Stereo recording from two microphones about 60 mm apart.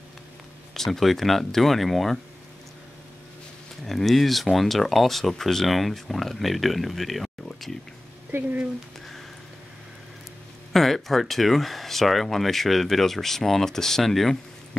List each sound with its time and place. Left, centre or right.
0.7 s speech: centre
3.8 s speech: centre
8.3 s speech: right
10.7 s speech: centre